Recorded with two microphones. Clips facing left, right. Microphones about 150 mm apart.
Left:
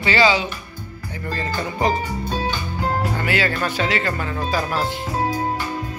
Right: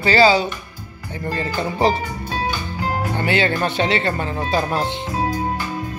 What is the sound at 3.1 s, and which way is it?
Speech, 25° right (ahead or behind).